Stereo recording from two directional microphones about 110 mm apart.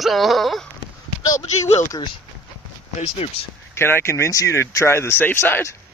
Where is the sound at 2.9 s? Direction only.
70° left (ahead or behind).